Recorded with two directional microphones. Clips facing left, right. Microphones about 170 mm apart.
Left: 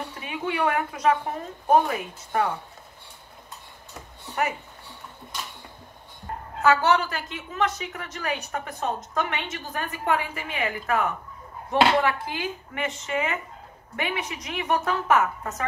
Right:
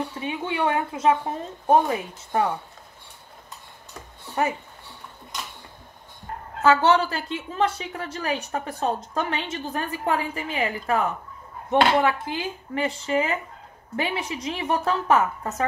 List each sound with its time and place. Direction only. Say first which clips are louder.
0.2 s a woman's voice: left 1 dB; 25° right (ahead or behind)
6.6 s a woman's voice: right 2 dB; 30° right (ahead or behind)